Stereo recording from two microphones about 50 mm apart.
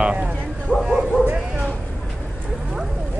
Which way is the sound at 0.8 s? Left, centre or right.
Centre.